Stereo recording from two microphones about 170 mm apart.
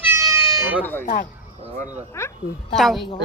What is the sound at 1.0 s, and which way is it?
Speech, 50° left (ahead or behind).